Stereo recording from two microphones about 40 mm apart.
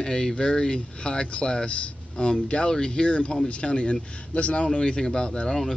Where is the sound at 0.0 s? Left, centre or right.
Centre.